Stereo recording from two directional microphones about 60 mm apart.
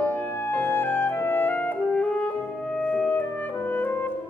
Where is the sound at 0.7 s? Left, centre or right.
Left.